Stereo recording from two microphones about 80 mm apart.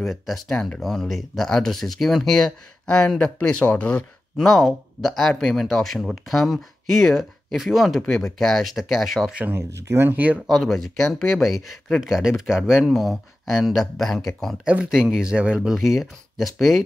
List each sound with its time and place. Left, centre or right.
0.0 s speech: centre
4.4 s speech: centre
9.5 s speech: right
10.4 s speech: centre
14.6 s speech: centre